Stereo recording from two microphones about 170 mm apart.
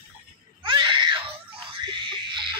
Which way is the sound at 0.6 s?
30° right (ahead or behind).